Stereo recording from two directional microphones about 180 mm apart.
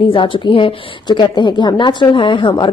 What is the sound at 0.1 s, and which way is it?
A woman's voice, 30° left (ahead or behind).